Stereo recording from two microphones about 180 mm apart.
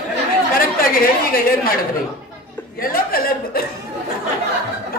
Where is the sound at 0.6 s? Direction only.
55° left (ahead or behind).